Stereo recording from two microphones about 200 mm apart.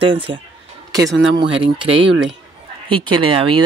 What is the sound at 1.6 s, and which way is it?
Speech, 25° right (ahead or behind).